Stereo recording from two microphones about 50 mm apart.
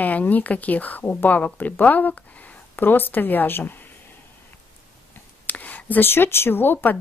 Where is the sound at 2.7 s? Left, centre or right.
Left.